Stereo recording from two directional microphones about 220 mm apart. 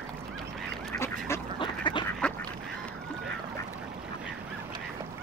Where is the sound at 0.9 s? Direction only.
10° left (ahead or behind).